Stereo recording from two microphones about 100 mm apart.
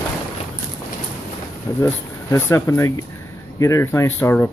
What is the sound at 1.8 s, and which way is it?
Speech, 25° left (ahead or behind).